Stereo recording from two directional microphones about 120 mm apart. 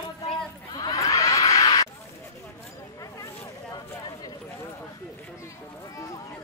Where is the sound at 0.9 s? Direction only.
25° left (ahead or behind).